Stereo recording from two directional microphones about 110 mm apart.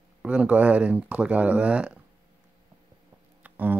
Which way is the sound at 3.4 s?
15° right (ahead or behind).